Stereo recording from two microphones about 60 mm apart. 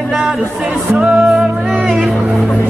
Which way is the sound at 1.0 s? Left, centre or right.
Centre.